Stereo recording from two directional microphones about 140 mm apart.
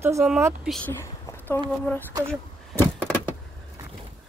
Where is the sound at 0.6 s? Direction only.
5° left (ahead or behind).